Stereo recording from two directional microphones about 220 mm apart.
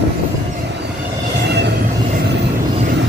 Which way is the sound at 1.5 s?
50° right (ahead or behind).